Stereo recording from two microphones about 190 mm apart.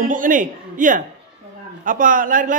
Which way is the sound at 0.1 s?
45° right (ahead or behind).